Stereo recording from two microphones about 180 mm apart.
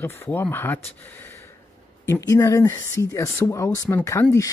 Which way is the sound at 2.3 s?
15° left (ahead or behind).